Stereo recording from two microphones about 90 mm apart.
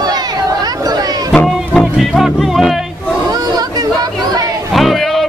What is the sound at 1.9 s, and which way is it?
Music, centre (ahead or behind).